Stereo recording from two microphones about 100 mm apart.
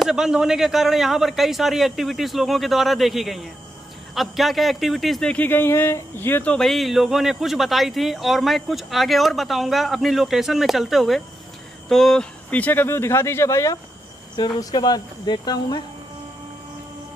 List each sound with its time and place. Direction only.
0.0 s a man's voice: 5° right (ahead or behind)
5.3 s speech: 20° left (ahead or behind)
6.5 s a man's voice: 5° left (ahead or behind); by 15.8 s 45° left (ahead or behind)